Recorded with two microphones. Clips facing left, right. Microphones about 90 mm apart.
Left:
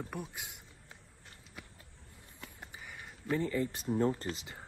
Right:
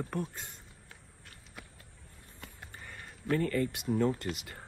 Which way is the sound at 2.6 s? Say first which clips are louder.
Even; 15° left (ahead or behind).